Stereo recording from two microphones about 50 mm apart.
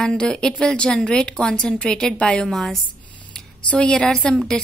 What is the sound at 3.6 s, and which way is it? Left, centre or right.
Speech, left.